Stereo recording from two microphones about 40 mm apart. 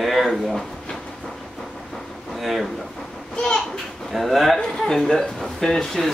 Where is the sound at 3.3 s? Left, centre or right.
Left.